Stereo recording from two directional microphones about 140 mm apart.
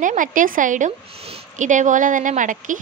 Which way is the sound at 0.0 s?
70° right (ahead or behind).